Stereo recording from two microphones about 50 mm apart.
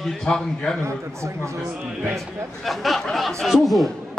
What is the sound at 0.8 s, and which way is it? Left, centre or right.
Speech, right.